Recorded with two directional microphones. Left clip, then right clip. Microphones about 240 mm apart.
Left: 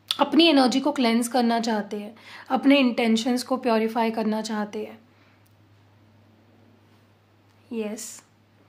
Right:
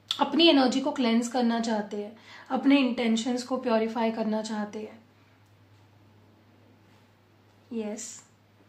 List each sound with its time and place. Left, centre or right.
0.0 s a woman's voice: left
7.7 s a woman's voice: left